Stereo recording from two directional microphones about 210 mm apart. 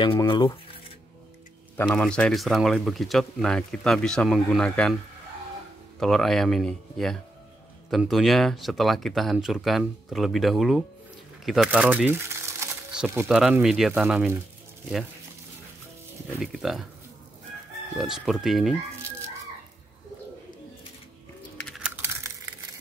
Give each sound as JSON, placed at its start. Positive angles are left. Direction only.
{"t": 0.3, "sound": "speech", "side_deg": 20}
{"t": 1.8, "sound": "speech", "side_deg": 5}
{"t": 5.9, "sound": "speech", "side_deg": 0}
{"t": 13.3, "sound": "speech", "side_deg": 0}
{"t": 16.5, "sound": "speech", "side_deg": 0}
{"t": 17.9, "sound": "speech", "side_deg": 0}
{"t": 21.6, "sound": "a sound", "side_deg": -5}